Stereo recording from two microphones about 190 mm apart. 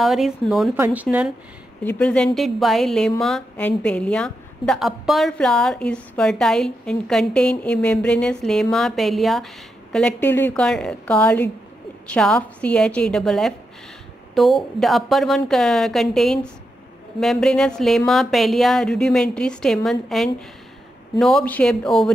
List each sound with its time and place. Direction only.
0.0 s a woman's voice: centre (ahead or behind)
0.7 s speech: 10° right (ahead or behind)
1.9 s a woman's voice: 5° left (ahead or behind)